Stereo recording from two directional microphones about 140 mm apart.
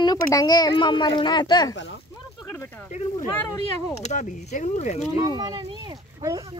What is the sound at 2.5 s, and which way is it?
Speech, 15° left (ahead or behind).